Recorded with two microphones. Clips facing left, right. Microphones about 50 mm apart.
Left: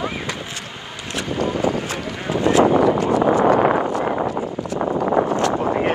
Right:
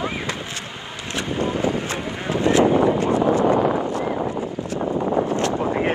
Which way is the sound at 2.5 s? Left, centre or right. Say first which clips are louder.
Left 2 dB; left.